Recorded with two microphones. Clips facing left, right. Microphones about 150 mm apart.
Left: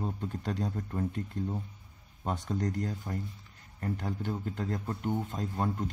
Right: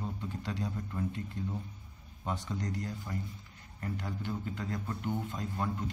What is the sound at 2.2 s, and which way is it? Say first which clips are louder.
A man's voice: left 4 dB; 50° left (ahead or behind).